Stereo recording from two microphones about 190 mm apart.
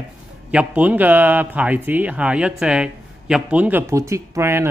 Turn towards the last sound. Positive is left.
turn(degrees=-15)  # may be behind; listen again after turning